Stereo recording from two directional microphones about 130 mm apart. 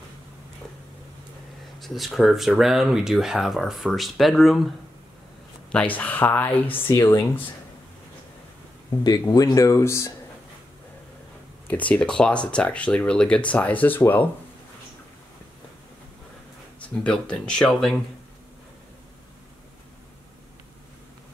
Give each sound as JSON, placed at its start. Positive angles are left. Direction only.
{"t": 1.8, "sound": "speech", "side_deg": 0}
{"t": 5.7, "sound": "speech", "side_deg": 10}
{"t": 6.9, "sound": "speech", "side_deg": 25}
{"t": 9.0, "sound": "speech", "side_deg": 30}
{"t": 11.6, "sound": "speech", "side_deg": 10}
{"t": 17.0, "sound": "speech", "side_deg": 5}